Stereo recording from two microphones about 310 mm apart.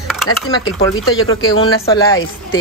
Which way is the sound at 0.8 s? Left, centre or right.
Centre.